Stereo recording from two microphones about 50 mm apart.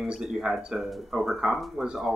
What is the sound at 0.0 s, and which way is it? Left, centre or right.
Speech, centre.